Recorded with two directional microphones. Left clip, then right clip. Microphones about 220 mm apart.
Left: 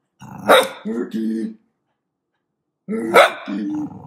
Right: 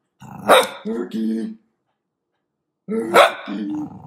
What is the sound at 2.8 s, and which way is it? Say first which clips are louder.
Dog: right 1 dB; 20° right (ahead or behind).